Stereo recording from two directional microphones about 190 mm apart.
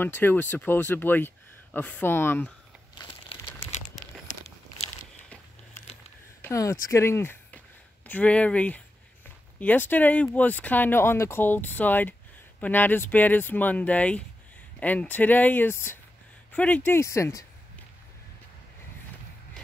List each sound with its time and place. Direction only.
0.0 s speech: 10° left (ahead or behind)
2.9 s crumpling: 25° left (ahead or behind)
5.8 s a sound: 15° left (ahead or behind)
6.4 s speech: 15° left (ahead or behind)